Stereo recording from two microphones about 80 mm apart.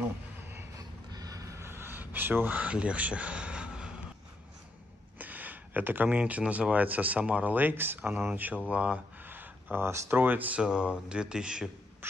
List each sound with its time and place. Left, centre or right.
0.7 s a sound: right; by 3.9 s centre
5.2 s speech: right
10.6 s speech: centre
12.0 s quack: right